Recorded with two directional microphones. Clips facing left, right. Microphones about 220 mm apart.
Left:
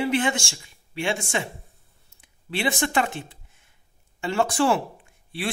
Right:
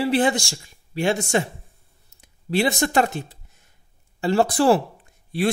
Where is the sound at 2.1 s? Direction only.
40° right (ahead or behind).